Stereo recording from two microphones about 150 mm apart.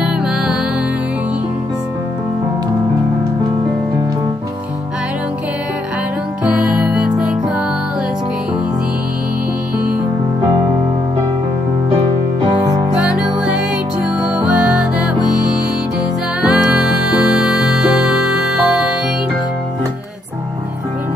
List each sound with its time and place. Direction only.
0.0 s music: 5° right (ahead or behind)
6.4 s music: 5° right (ahead or behind)
14.2 s music: 5° right (ahead or behind)